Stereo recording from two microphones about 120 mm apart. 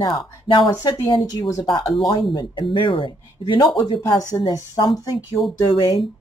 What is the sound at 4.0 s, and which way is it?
Speech, 30° left (ahead or behind).